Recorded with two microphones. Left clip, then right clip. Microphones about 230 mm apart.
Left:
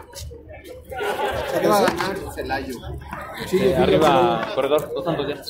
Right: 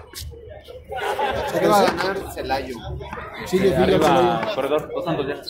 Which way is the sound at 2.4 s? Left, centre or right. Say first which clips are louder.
Right 1 dB; right.